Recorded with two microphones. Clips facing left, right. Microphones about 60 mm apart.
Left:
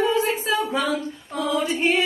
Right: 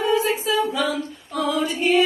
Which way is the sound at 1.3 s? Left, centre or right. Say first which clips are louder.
Right 1 dB; right.